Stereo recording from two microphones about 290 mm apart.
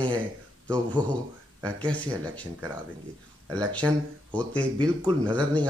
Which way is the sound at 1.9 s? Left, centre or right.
Centre.